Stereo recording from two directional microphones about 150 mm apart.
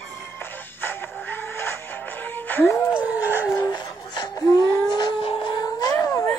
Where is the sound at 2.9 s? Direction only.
15° right (ahead or behind).